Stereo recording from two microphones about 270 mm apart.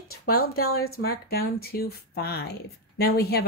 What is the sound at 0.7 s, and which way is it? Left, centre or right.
Speech, left.